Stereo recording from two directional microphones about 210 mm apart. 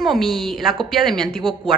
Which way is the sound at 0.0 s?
Centre (ahead or behind).